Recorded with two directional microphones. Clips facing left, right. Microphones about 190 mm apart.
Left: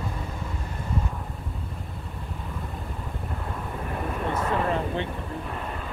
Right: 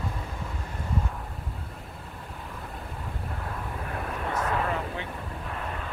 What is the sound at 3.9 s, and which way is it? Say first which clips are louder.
Vehicle: left 3 dB; 5° left (ahead or behind).